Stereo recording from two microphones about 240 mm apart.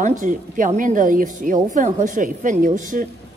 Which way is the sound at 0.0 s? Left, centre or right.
Right.